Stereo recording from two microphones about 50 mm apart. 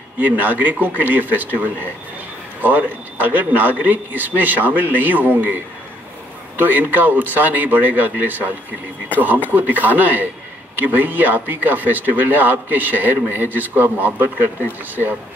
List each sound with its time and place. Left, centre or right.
0.2 s speech: right
6.6 s speech: right
9.5 s speech: right